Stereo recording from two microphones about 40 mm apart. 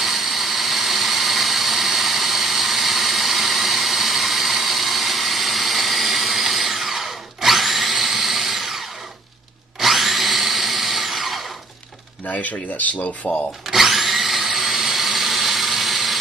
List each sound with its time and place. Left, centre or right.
0.0 s blender: centre
9.8 s a sound: centre
12.3 s speech: left
13.7 s tools: centre